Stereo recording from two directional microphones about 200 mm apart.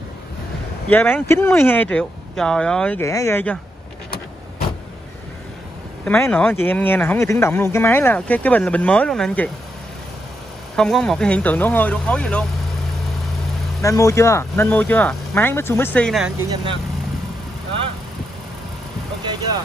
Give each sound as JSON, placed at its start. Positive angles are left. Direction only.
{"t": 0.8, "sound": "speech", "side_deg": 10}
{"t": 6.0, "sound": "speech", "side_deg": 10}
{"t": 10.8, "sound": "speech", "side_deg": 5}
{"t": 13.8, "sound": "speech", "side_deg": 15}
{"t": 16.3, "sound": "speech", "side_deg": -15}